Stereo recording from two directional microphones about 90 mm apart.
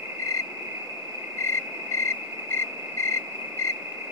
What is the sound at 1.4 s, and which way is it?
Cricket, 30° left (ahead or behind).